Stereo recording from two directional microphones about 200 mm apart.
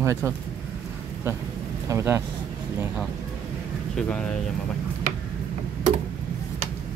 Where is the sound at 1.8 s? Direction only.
15° right (ahead or behind).